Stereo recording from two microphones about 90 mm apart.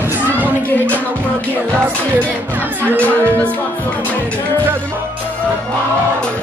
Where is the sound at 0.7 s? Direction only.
20° left (ahead or behind).